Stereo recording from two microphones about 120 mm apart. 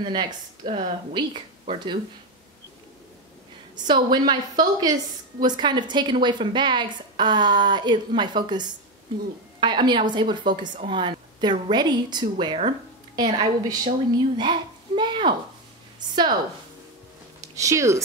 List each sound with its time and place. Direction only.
0.1 s a woman's voice: 40° right (ahead or behind)
3.7 s a woman's voice: 40° right (ahead or behind)
17.6 s speech: 25° right (ahead or behind)